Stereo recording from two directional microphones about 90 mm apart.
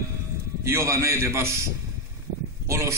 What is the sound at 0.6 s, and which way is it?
A man's voice, 30° right (ahead or behind).